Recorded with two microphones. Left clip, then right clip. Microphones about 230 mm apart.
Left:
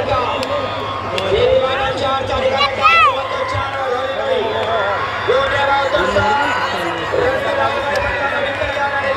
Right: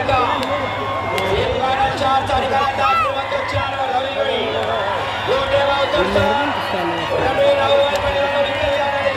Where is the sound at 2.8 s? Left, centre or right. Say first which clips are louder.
Left 9 dB; left.